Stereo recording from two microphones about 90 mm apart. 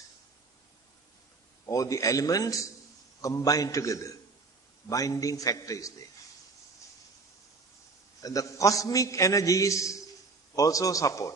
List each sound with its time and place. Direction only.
1.7 s a man's voice: 40° left (ahead or behind)
8.2 s a man's voice: 40° left (ahead or behind)